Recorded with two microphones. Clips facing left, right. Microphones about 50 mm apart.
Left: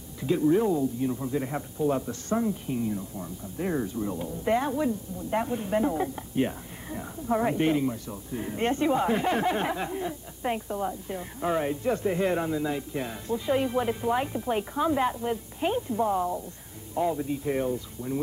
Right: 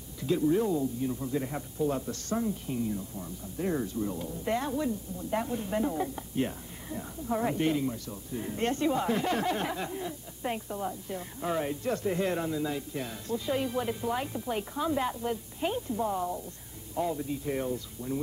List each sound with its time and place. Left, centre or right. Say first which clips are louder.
0.2 s speech: left 3 dB; left